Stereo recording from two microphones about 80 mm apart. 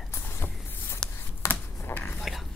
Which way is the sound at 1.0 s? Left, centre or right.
Centre.